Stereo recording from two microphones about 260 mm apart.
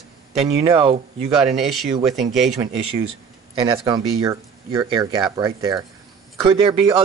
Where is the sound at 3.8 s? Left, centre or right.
Centre.